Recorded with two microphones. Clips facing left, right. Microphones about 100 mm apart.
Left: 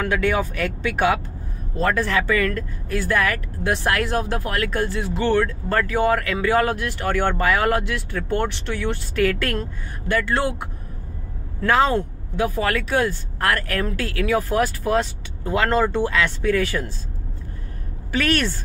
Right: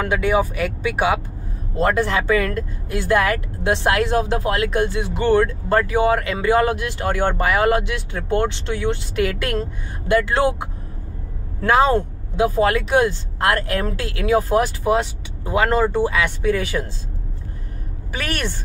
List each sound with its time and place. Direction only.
0.0 s speech: 15° right (ahead or behind)
18.1 s speech: 15° right (ahead or behind)